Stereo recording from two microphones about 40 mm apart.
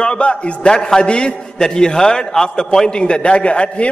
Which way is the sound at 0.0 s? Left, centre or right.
Left.